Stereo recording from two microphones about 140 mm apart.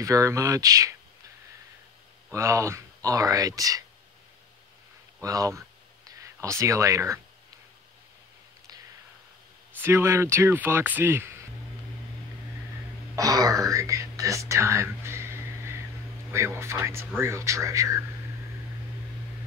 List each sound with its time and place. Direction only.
0.0 s speech: 25° right (ahead or behind)
2.3 s speech: 20° right (ahead or behind)
5.2 s a sound: 25° right (ahead or behind)
9.8 s speech: 20° right (ahead or behind)
13.1 s whispering: 25° right (ahead or behind)
16.3 s speech: 20° right (ahead or behind)